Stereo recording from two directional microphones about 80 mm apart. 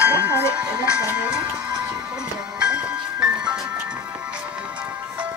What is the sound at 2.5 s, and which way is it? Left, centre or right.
Music, centre.